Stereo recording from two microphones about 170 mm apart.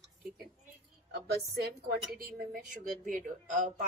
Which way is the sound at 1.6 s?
65° right (ahead or behind).